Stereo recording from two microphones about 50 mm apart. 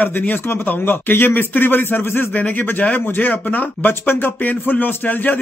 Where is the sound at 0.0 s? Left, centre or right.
Left.